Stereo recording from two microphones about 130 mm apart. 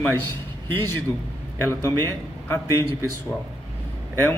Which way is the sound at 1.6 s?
20° left (ahead or behind).